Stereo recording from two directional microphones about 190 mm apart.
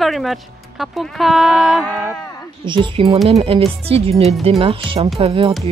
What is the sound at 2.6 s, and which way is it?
Speech, 25° right (ahead or behind).